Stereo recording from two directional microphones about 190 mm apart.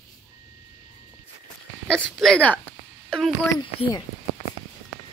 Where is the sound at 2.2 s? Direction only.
5° left (ahead or behind).